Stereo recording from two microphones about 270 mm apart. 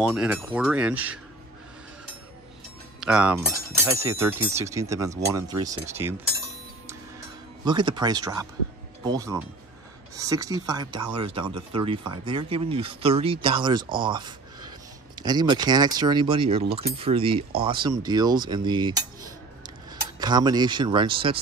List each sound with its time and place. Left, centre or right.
0.0 s speech: centre
3.0 s speech: centre
7.6 s speech: centre
20.2 s speech: centre